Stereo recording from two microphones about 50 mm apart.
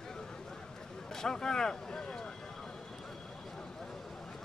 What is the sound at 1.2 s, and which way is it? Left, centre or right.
Speech, centre.